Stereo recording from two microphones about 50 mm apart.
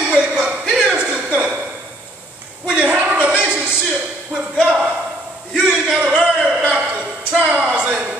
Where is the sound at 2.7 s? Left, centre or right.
Right.